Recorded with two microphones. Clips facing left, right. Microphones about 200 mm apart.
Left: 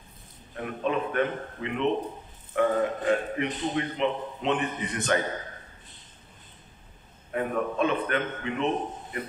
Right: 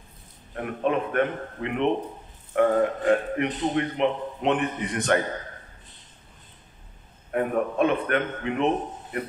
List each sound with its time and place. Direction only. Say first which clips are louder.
0.6 s a man's voice: right 3 dB; 55° right (ahead or behind)
7.3 s a man's voice: right 3 dB; 50° right (ahead or behind)